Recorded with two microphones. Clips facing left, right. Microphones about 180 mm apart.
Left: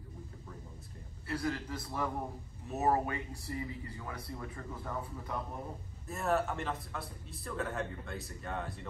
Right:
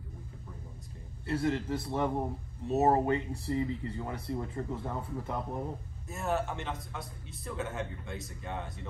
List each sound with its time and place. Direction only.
1.2 s speech: 25° right (ahead or behind)
6.0 s a man's voice: centre (ahead or behind)